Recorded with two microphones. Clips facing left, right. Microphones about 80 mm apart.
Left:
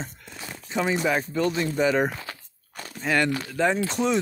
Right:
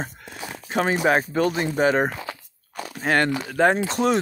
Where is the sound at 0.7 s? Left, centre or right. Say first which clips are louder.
Right 4 dB; right.